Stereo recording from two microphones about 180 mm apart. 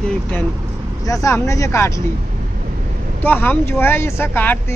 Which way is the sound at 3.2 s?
10° left (ahead or behind).